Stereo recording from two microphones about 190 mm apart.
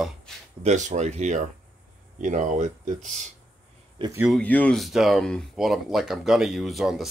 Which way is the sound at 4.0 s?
15° right (ahead or behind).